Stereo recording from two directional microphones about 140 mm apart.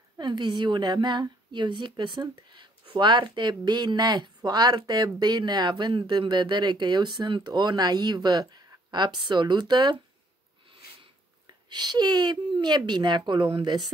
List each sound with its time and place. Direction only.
0.2 s a woman's voice: 35° right (ahead or behind)
10.8 s a sound: 90° left
11.4 s a woman's voice: 30° right (ahead or behind)